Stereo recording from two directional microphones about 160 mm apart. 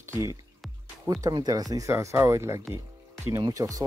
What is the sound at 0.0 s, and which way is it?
Speech, 20° right (ahead or behind).